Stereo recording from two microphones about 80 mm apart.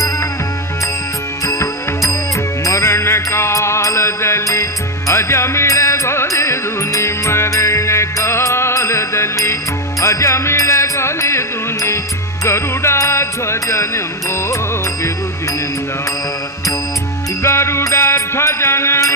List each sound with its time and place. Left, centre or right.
1.4 s music: left
17.4 s music: left